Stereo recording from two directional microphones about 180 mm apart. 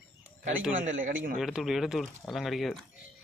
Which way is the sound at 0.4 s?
50° right (ahead or behind).